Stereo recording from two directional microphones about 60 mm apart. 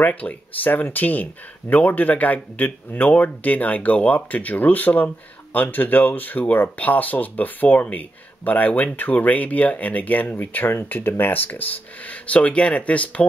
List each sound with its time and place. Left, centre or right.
0.0 s speech: left